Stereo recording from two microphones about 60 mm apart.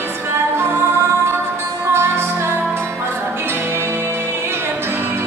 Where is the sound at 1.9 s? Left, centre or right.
Right.